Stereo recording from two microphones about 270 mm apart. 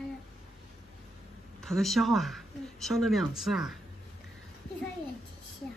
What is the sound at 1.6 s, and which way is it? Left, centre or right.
Speech, centre.